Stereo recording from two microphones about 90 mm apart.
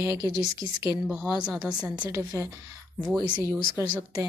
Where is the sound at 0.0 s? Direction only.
35° right (ahead or behind).